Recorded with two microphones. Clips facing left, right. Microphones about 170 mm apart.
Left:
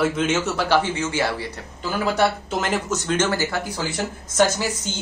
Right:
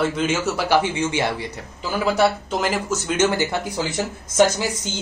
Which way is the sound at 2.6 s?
Centre (ahead or behind).